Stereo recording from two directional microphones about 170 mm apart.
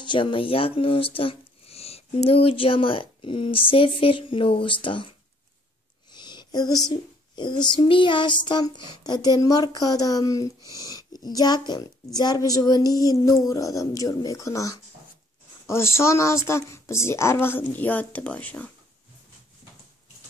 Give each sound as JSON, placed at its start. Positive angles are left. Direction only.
{"t": 0.0, "sound": "speech", "side_deg": 30}
{"t": 4.8, "sound": "child singing", "side_deg": 30}
{"t": 6.1, "sound": "a sound", "side_deg": 25}
{"t": 6.9, "sound": "child singing", "side_deg": 25}
{"t": 15.6, "sound": "speech", "side_deg": 15}